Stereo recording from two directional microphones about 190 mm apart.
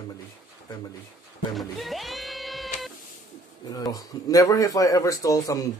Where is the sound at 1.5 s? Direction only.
Centre (ahead or behind).